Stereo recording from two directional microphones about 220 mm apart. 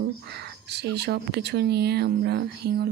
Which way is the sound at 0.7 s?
50° right (ahead or behind).